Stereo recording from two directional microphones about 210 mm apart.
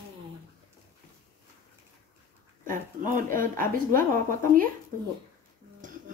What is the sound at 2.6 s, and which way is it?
Speech, 40° right (ahead or behind).